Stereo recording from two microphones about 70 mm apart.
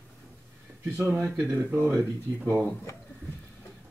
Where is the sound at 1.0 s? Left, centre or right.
Right.